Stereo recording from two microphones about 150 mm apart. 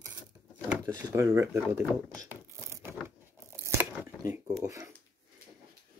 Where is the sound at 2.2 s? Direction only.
15° right (ahead or behind).